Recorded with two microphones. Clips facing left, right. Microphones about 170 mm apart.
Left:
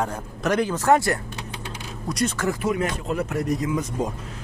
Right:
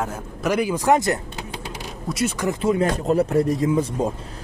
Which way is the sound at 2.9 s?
40° right (ahead or behind).